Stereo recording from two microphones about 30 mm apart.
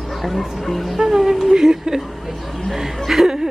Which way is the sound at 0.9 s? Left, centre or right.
Centre.